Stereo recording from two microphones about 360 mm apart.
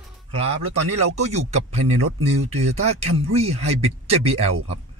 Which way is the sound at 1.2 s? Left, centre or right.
Centre.